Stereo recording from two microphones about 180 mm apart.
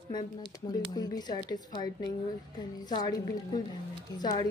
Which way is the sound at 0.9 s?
20° left (ahead or behind).